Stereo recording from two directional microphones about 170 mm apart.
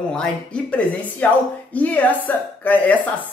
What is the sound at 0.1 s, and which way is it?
A woman's voice, 5° left (ahead or behind).